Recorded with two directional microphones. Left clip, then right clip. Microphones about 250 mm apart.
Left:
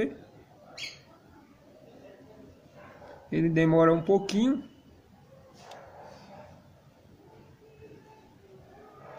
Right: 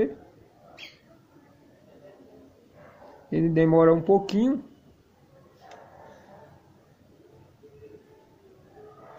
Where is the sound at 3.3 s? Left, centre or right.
Centre.